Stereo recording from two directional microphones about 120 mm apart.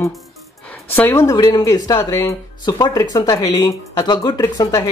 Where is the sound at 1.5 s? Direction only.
35° left (ahead or behind).